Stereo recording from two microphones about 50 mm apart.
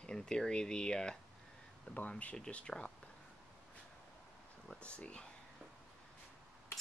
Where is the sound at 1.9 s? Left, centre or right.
Left.